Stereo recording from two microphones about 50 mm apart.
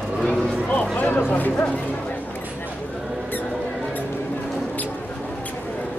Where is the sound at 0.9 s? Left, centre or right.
Left.